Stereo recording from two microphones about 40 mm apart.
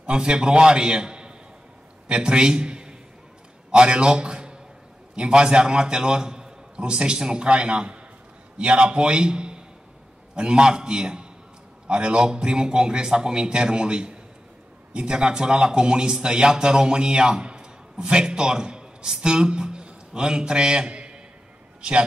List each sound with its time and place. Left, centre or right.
0.0 s a man's voice: right